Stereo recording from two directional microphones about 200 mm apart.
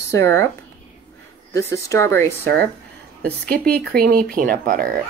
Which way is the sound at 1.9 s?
15° left (ahead or behind).